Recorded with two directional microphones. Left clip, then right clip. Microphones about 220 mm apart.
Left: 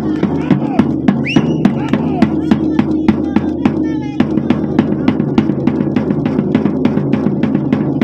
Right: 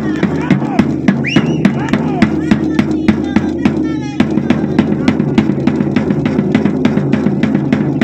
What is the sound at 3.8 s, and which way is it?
Music, 40° right (ahead or behind).